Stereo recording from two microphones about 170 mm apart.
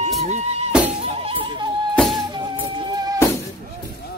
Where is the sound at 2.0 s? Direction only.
Centre (ahead or behind).